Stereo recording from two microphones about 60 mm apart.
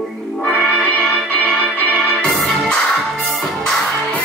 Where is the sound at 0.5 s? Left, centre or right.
Centre.